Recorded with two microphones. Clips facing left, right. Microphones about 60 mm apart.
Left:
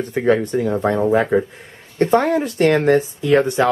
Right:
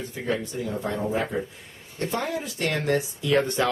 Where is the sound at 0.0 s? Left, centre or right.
Left.